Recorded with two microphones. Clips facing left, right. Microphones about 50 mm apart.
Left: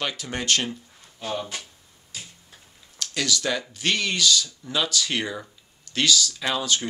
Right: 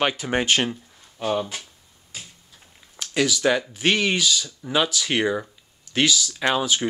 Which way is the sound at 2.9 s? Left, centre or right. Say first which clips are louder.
Right 4 dB; centre.